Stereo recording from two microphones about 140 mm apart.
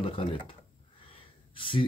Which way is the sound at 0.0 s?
40° left (ahead or behind).